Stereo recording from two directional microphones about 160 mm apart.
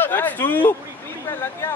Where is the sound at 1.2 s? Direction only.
15° left (ahead or behind).